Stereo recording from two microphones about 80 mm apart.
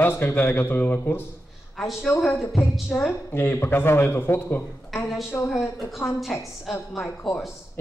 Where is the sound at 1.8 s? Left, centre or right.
Centre.